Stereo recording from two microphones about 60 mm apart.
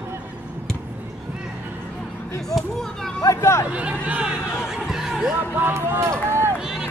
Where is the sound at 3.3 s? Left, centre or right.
Left.